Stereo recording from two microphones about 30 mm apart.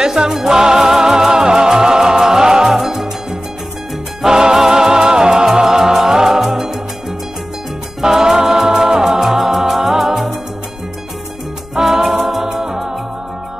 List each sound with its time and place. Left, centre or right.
0.0 s music: centre
2.7 s music: centre
4.2 s music: right
9.2 s music: centre
11.8 s music: centre